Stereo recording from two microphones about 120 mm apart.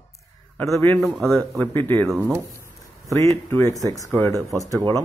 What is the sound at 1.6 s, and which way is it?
Speech, 20° left (ahead or behind).